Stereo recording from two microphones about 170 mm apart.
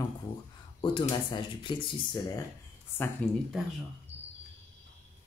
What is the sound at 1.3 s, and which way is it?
Speech, 25° left (ahead or behind).